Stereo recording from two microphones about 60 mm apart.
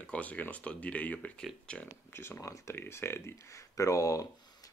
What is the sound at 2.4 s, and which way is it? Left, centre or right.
Speech, left.